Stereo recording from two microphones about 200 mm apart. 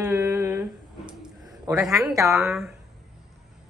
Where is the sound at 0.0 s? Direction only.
10° right (ahead or behind).